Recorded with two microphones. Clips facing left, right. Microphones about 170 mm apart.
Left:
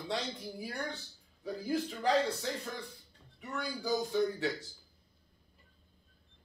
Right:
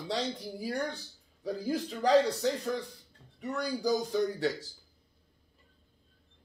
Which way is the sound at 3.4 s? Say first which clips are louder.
Right 5 dB; 40° right (ahead or behind).